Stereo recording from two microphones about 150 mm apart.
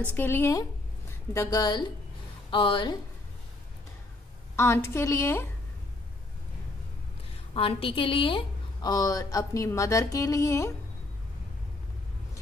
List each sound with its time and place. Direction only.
0.1 s a woman's voice: 15° left (ahead or behind); by 3.0 s 35° left (ahead or behind)
4.6 s a woman's voice: 15° left (ahead or behind)
7.5 s a woman's voice: 40° left (ahead or behind); by 10.7 s 20° left (ahead or behind)